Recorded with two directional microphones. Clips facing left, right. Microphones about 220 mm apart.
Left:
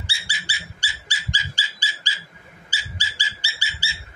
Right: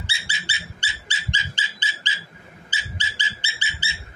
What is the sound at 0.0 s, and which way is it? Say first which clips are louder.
Dog: right 1 dB; 25° right (ahead or behind).